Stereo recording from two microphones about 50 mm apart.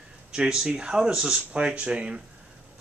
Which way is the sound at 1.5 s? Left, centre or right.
Right.